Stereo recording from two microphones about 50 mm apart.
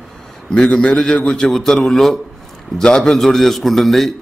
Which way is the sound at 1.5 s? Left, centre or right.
Centre.